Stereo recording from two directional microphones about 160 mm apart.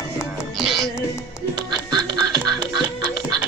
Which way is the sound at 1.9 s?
25° right (ahead or behind).